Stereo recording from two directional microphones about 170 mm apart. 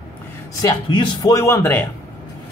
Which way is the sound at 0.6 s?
25° left (ahead or behind).